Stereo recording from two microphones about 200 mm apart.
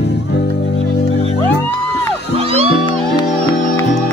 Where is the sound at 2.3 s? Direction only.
30° right (ahead or behind).